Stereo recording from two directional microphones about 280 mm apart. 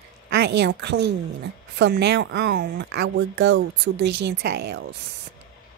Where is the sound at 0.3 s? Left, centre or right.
Right.